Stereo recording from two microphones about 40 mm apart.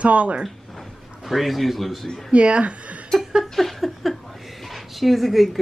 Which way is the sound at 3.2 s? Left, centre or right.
Centre.